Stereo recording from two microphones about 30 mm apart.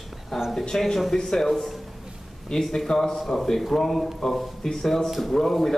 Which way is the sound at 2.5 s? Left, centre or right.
Left.